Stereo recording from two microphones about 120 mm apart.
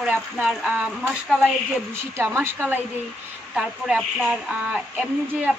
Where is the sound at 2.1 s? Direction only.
20° right (ahead or behind).